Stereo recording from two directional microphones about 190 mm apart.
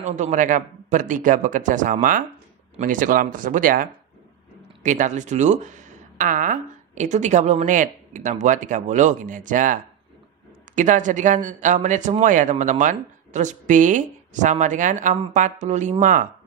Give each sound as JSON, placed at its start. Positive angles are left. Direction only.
{"t": 0.0, "sound": "a man's voice", "side_deg": -40}